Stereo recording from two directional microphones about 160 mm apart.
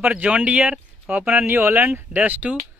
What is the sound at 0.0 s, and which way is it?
Speech, 10° right (ahead or behind).